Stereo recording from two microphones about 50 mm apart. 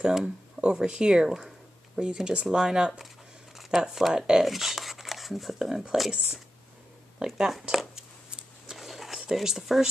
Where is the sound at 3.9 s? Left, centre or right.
Centre.